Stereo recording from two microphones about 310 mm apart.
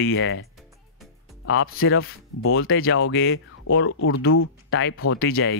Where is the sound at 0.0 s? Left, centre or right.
Left.